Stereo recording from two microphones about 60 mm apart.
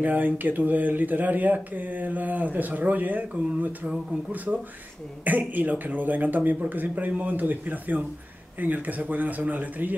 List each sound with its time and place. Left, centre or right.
0.0 s speech: right
5.2 s speech: right